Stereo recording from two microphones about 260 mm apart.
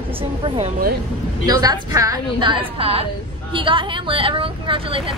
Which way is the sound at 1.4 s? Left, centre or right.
Centre.